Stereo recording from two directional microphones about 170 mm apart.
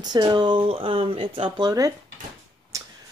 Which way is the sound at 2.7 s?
20° right (ahead or behind).